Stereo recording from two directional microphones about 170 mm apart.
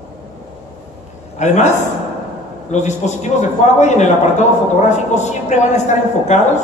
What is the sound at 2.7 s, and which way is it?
A man's voice, 45° left (ahead or behind).